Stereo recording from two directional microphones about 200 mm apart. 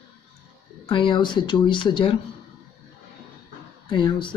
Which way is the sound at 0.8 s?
25° left (ahead or behind).